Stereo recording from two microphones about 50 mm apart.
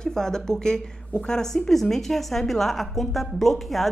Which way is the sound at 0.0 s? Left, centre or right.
Centre.